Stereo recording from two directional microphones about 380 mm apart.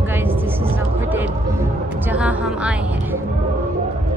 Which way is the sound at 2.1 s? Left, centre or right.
Centre.